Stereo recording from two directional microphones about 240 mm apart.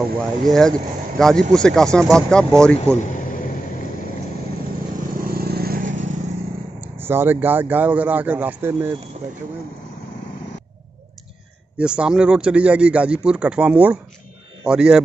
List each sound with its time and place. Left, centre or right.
0.5 s speech: centre
5.1 s vehicle: right
6.8 s speech: centre
11.8 s a man's voice: centre